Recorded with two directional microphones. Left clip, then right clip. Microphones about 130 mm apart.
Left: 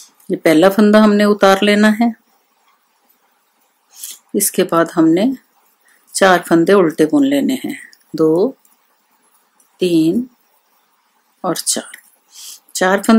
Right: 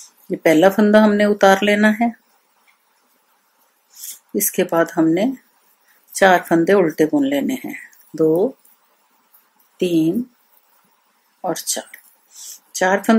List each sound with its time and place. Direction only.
0.3 s speech: 35° left (ahead or behind)
4.1 s speech: 35° left (ahead or behind)
9.8 s speech: 30° left (ahead or behind)
11.4 s a sound: 40° left (ahead or behind)